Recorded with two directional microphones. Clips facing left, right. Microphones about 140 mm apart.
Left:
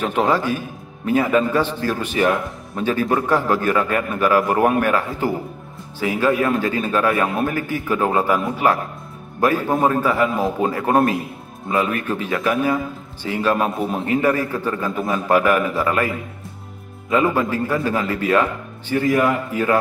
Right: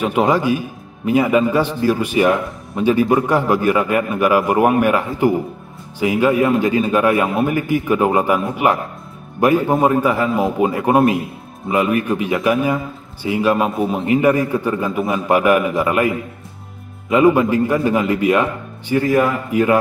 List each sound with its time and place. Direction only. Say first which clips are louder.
0.0 s a man's voice: right 3 dB; 15° right (ahead or behind)
13.7 s a man's voice: right 3 dB; centre (ahead or behind)
13.9 s a man's voice: right 4 dB; 15° right (ahead or behind)
17.1 s a man's voice: right 6 dB; 15° right (ahead or behind)